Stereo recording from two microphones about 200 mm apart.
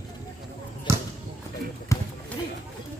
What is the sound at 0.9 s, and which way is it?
Basketball bounce, 15° right (ahead or behind).